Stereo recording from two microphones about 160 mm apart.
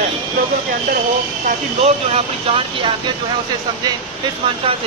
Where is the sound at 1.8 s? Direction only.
40° right (ahead or behind).